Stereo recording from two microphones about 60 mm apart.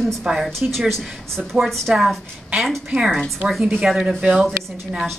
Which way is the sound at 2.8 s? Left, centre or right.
Centre.